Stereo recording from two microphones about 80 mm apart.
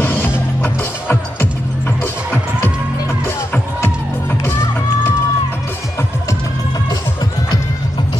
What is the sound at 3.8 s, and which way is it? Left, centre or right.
Music, left.